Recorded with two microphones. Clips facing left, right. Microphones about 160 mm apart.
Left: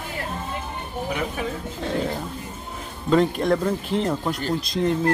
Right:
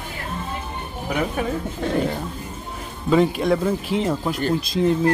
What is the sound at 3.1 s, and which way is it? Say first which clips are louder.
Speech: right 1 dB; 5° right (ahead or behind).